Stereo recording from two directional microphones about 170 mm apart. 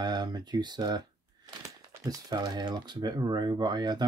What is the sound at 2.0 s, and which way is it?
Speech, 20° right (ahead or behind).